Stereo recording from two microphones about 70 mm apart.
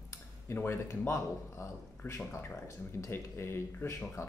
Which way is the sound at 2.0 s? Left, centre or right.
Left.